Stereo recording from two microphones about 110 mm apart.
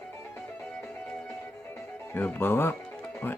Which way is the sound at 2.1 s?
20° left (ahead or behind).